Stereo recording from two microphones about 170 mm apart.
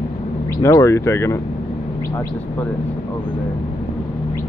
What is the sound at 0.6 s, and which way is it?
Speech, 20° left (ahead or behind).